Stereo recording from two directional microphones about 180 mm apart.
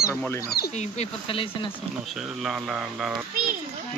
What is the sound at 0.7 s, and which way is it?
Speech, 40° left (ahead or behind).